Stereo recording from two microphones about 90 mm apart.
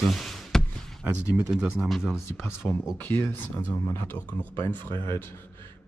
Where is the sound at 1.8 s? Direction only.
Centre (ahead or behind).